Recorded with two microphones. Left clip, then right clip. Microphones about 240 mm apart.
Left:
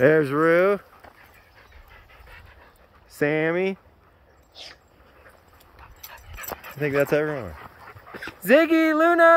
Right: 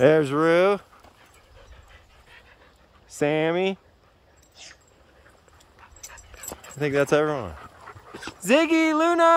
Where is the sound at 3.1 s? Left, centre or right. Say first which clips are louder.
Even; centre.